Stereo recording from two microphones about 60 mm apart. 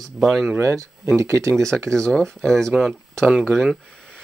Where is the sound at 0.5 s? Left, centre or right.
Right.